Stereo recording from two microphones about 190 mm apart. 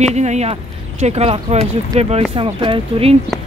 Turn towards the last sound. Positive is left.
turn(degrees=-30)  # may be behind; listen again after turning